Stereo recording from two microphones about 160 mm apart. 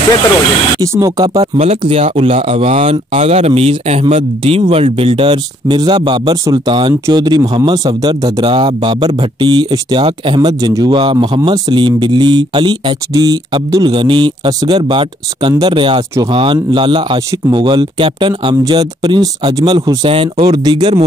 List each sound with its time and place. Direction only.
0.7 s speech: 20° right (ahead or behind)
1.2 s speech: 35° right (ahead or behind)